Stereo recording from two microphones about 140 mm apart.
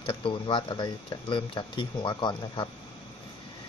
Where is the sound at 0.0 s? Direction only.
40° left (ahead or behind).